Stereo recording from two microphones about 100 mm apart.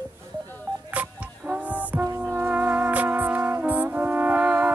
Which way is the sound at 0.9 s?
10° right (ahead or behind).